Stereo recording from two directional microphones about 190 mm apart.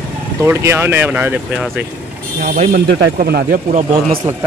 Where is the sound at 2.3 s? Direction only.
45° right (ahead or behind).